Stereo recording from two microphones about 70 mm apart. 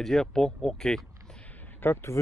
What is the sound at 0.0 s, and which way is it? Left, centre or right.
Speech, centre.